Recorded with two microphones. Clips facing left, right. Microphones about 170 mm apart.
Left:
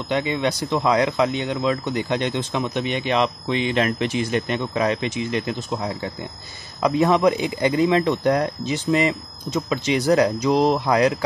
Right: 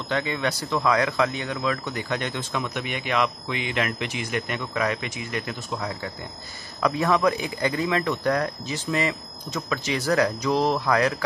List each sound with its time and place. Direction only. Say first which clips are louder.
0.1 s speech: left 4 dB; 20° left (ahead or behind)